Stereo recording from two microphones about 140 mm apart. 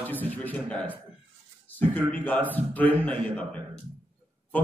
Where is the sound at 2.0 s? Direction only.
10° left (ahead or behind).